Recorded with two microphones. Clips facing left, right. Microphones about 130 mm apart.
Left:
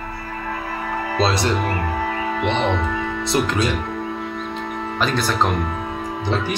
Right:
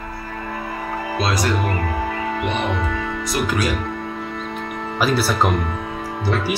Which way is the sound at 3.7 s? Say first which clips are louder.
Even; centre (ahead or behind).